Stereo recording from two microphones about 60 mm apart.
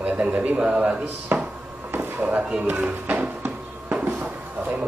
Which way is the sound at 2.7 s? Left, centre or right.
Right.